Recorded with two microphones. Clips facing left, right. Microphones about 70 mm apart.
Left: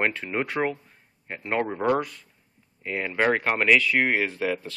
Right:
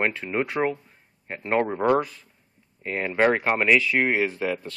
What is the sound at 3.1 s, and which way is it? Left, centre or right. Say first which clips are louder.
Speech: right 2 dB; centre.